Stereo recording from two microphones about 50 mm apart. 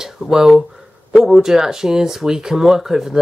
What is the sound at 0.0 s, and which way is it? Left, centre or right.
Speech, centre.